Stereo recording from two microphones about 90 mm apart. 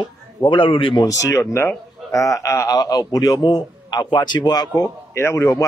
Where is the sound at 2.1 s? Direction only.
40° left (ahead or behind).